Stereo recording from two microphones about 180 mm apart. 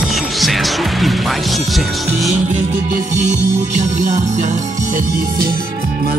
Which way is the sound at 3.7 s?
40° right (ahead or behind).